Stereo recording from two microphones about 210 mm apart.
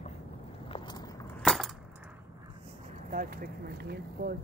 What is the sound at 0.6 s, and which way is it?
Walk, 20° left (ahead or behind).